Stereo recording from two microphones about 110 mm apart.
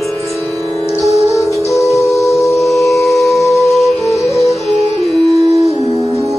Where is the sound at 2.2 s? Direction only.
30° left (ahead or behind).